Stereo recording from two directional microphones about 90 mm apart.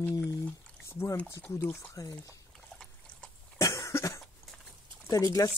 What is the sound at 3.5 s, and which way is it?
Cough, 35° left (ahead or behind).